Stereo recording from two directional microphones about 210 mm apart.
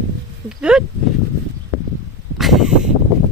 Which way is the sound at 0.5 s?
5° right (ahead or behind).